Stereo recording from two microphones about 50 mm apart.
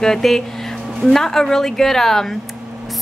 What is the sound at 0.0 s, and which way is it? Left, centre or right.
A woman's voice, centre.